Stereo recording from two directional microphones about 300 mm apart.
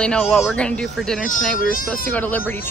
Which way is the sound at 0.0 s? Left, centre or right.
Centre.